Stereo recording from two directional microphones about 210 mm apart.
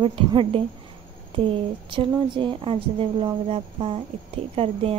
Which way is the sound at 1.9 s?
25° right (ahead or behind).